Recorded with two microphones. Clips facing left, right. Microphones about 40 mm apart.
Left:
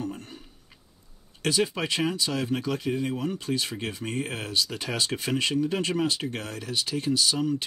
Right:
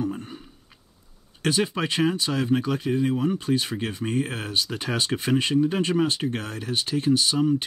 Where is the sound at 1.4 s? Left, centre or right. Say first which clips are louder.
Right 2 dB; right.